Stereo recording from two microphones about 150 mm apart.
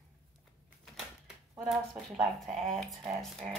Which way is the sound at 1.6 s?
Centre (ahead or behind).